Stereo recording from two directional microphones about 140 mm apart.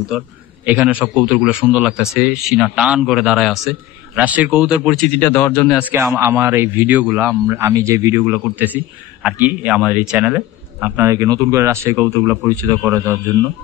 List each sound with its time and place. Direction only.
0.1 s a man's voice: centre (ahead or behind)
5.9 s a man's voice: 20° right (ahead or behind)